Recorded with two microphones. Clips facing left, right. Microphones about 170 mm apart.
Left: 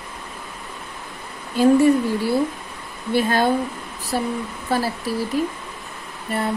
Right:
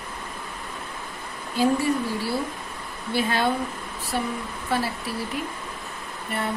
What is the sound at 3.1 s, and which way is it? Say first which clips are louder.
Speech: left 5 dB; 45° left (ahead or behind).